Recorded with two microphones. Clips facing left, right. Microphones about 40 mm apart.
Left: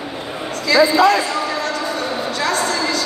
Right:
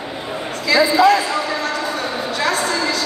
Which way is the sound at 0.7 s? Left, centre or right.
Centre.